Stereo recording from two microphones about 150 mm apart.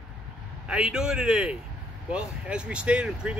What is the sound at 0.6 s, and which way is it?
Speech, 5° right (ahead or behind).